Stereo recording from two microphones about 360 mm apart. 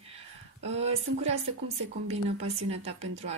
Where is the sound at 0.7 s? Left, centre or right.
Centre.